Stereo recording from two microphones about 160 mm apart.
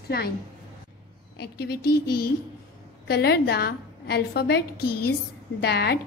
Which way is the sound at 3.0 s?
90° left.